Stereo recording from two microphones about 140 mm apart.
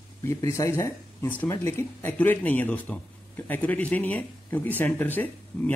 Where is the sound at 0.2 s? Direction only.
20° left (ahead or behind).